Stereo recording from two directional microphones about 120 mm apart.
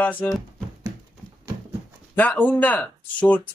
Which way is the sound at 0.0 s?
15° left (ahead or behind).